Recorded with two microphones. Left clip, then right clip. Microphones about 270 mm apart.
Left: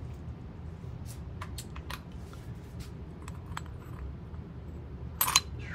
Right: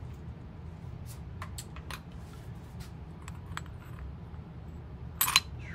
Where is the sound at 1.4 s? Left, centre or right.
Left.